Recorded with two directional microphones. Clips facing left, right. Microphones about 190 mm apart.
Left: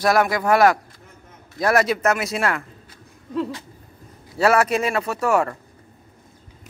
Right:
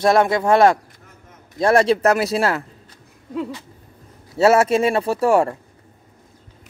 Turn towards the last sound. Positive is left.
turn(degrees=-30)  # may be behind; listen again after turning